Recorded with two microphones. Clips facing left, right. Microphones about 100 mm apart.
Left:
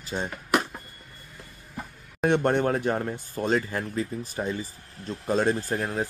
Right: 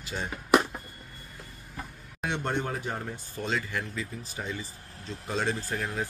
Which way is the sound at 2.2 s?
55° left (ahead or behind).